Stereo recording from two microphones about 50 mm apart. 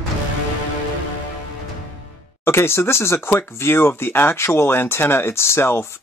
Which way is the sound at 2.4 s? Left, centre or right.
Left.